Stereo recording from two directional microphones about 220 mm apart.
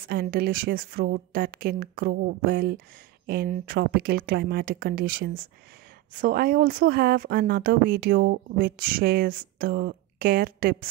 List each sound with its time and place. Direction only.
0.0 s speech: 45° right (ahead or behind)